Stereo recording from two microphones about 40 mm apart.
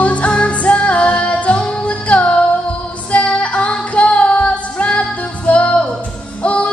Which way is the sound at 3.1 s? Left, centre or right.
Left.